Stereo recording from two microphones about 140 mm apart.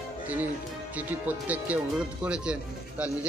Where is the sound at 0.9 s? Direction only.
10° right (ahead or behind).